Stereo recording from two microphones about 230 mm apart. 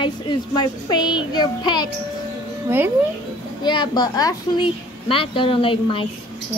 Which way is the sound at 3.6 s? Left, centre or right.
Centre.